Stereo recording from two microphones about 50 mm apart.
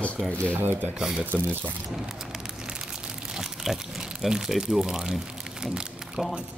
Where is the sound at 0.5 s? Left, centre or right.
Right.